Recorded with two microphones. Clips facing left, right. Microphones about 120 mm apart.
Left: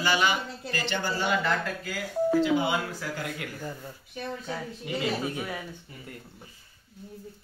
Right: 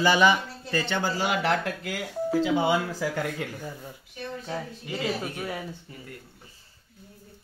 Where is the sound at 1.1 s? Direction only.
90° right; by 2.0 s 70° right (ahead or behind).